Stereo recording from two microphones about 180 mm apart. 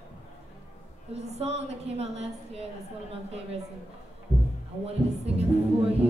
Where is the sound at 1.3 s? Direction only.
35° right (ahead or behind).